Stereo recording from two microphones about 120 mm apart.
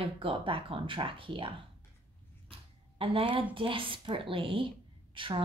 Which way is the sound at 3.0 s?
50° right (ahead or behind).